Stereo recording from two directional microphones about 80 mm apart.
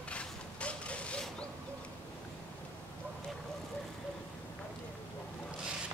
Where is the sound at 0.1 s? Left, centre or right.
Centre.